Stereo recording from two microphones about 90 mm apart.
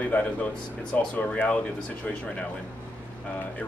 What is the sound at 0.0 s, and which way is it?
Speech, 15° left (ahead or behind).